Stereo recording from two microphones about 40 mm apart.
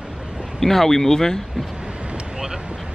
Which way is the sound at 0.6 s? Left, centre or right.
Centre.